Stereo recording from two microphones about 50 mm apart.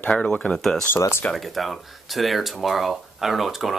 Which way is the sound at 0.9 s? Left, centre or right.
Left.